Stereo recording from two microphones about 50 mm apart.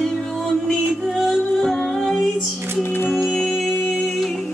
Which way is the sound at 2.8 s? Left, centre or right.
Left.